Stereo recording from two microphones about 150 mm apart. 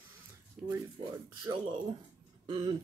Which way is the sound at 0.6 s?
5° right (ahead or behind).